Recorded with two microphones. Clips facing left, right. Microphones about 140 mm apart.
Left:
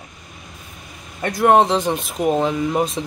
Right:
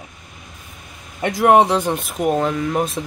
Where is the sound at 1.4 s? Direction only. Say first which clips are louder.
Right 1 dB; 10° right (ahead or behind); by 2.8 s 10° left (ahead or behind).